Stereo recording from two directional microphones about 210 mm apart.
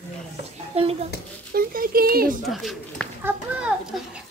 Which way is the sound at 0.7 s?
30° right (ahead or behind).